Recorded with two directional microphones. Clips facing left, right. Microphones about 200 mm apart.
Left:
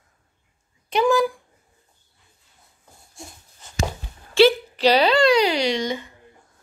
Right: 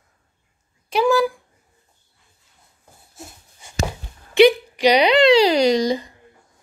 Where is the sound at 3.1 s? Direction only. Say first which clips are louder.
Right 1 dB; 5° right (ahead or behind); by 5.4 s 20° right (ahead or behind).